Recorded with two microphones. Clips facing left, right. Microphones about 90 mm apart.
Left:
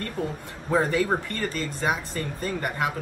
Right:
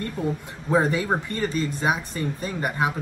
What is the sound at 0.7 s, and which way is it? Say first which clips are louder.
Speech: right 1 dB; 15° right (ahead or behind).